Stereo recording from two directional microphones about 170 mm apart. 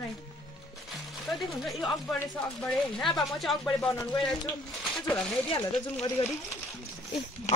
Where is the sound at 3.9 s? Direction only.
15° left (ahead or behind).